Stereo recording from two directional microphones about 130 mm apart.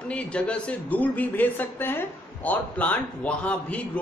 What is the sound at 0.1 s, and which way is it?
A man's voice, 10° left (ahead or behind).